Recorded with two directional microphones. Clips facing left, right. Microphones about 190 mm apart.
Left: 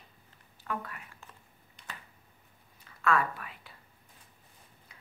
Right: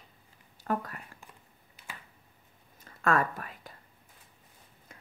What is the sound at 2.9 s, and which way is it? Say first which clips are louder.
Whispering: right 1 dB; 45° right (ahead or behind).